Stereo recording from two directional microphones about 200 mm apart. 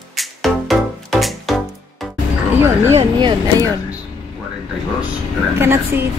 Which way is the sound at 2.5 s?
10° right (ahead or behind).